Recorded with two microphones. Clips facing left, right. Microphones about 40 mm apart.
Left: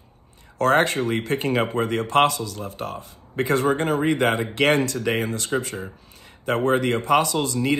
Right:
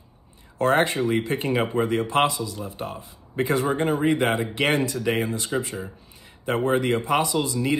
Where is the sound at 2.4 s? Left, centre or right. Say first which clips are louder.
Left 1 dB; left.